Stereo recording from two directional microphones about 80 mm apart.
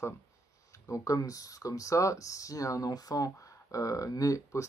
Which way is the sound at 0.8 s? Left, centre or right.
Left.